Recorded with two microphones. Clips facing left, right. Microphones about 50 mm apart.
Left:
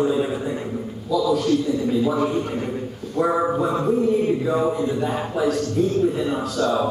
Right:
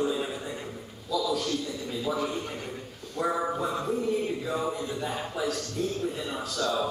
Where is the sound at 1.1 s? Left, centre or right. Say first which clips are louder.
Left 8 dB; centre.